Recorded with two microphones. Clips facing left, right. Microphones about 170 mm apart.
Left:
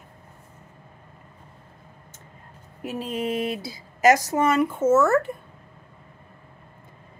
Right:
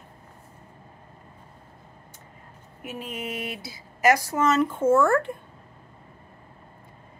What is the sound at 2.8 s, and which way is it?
A woman's voice, 35° left (ahead or behind).